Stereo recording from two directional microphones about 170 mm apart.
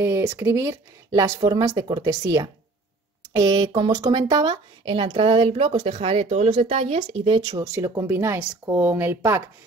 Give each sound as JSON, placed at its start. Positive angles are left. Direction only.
{"t": 0.0, "sound": "speech", "side_deg": -15}